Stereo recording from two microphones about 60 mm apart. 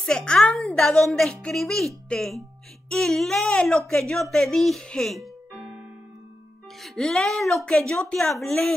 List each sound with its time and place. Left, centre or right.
0.0 s a woman's voice: centre
5.5 s keyboard: right
6.8 s a woman's voice: centre